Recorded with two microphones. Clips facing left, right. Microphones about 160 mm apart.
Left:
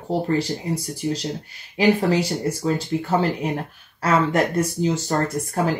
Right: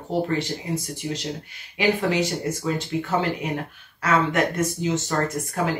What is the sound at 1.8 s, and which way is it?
Speech, 35° left (ahead or behind).